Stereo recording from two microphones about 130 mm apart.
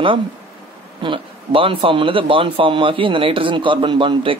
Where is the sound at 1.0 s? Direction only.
40° right (ahead or behind).